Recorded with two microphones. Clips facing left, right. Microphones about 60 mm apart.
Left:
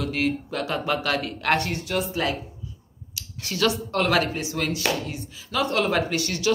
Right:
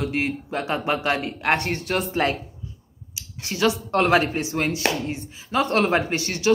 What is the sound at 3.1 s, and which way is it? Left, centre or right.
A woman's voice, right.